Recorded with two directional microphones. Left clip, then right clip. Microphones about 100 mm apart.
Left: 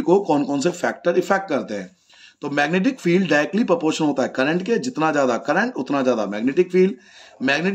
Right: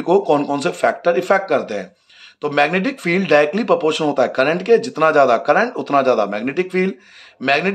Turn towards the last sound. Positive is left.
turn(degrees=20)  # may be behind; listen again after turning